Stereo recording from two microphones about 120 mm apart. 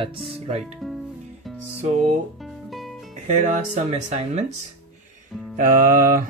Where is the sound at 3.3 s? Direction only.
80° right.